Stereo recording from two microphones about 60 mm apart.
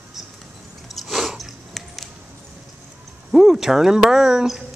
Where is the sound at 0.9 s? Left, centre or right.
Centre.